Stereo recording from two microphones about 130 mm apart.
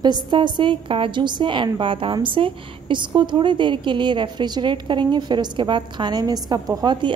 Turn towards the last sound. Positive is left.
turn(degrees=-35)  # may be behind; listen again after turning